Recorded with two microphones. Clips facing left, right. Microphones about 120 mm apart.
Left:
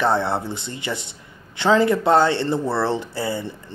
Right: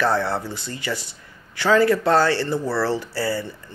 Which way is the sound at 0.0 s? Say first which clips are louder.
Left 1 dB; 20° left (ahead or behind).